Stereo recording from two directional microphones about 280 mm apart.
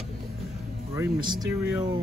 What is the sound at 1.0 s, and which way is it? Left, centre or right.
Speech, centre.